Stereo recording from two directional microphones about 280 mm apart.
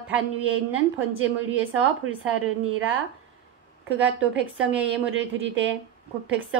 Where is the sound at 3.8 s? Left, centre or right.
Centre.